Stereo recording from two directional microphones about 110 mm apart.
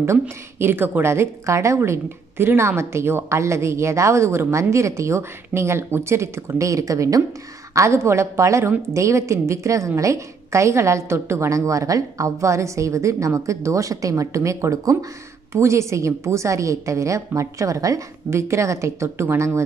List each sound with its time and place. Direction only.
0.0 s a woman's voice: 25° right (ahead or behind)